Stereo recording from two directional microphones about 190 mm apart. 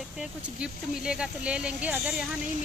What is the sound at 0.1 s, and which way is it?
A woman's voice, 5° right (ahead or behind).